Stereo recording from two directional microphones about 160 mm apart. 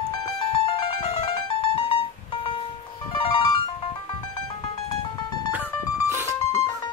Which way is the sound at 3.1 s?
30° left (ahead or behind).